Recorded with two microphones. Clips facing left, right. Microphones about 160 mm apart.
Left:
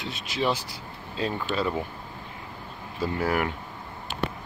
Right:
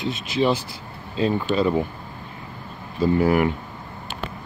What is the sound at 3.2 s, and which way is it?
Speech, 10° right (ahead or behind).